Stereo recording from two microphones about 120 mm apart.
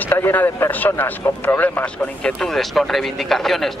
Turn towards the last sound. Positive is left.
turn(degrees=0)  # may be behind; listen again after turning